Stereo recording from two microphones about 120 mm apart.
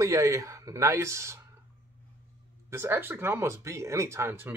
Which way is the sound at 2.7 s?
20° right (ahead or behind).